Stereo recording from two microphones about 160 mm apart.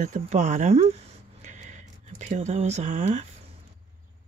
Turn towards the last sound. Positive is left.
turn(degrees=-45)  # may be behind; listen again after turning